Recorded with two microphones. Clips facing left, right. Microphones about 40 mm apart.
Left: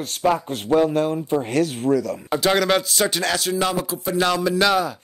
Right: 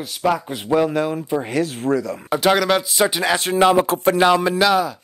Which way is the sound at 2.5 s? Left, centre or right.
Centre.